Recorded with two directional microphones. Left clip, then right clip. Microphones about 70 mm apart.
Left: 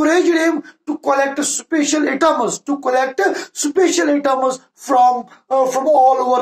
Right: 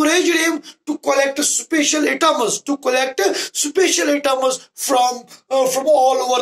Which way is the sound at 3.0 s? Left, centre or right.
Left.